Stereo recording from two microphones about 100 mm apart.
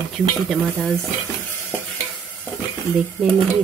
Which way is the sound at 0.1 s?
5° right (ahead or behind).